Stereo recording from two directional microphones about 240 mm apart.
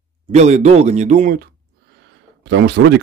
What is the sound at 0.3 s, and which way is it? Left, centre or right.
A man's voice, right.